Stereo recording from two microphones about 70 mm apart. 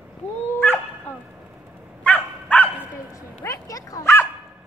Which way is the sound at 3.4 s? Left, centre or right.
Left.